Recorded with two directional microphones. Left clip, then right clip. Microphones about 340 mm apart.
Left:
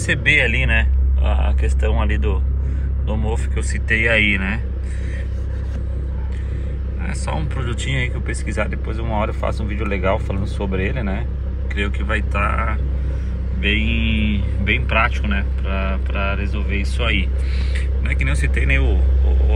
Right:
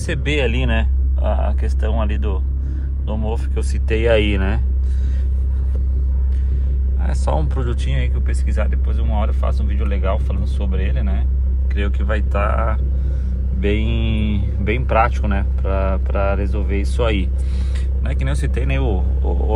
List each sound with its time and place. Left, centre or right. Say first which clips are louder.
0.1 s speech: left 5 dB; centre
7.0 s speech: right 4 dB; centre